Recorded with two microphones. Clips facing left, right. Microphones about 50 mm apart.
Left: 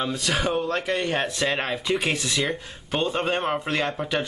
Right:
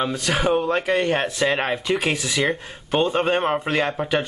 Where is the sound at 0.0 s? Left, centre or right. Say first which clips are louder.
Right 3 dB; centre.